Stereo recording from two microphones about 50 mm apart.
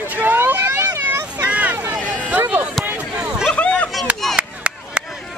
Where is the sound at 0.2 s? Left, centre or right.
Right.